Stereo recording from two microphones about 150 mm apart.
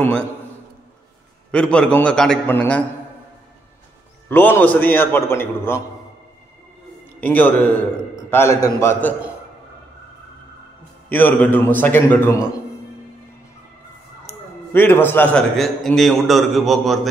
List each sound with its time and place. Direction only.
0.0 s a man's voice: 5° left (ahead or behind)
1.5 s a man's voice: 5° left (ahead or behind)
4.3 s a man's voice: 10° left (ahead or behind)
7.2 s a man's voice: 10° left (ahead or behind)
11.1 s a man's voice: 10° left (ahead or behind)
14.2 s a sound: 15° left (ahead or behind)
15.5 s a man's voice: centre (ahead or behind)